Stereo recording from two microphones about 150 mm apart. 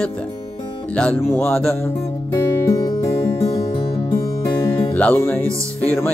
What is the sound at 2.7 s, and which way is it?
Music, 20° left (ahead or behind).